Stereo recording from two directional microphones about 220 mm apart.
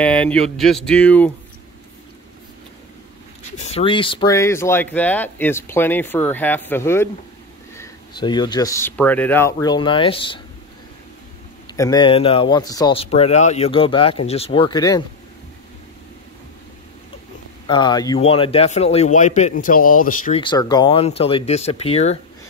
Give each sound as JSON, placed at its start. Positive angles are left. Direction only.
{"t": 0.0, "sound": "speech", "side_deg": 5}
{"t": 3.5, "sound": "speech", "side_deg": 30}
{"t": 11.7, "sound": "speech", "side_deg": 15}
{"t": 17.6, "sound": "a man's voice", "side_deg": 20}
{"t": 20.3, "sound": "speech", "side_deg": 20}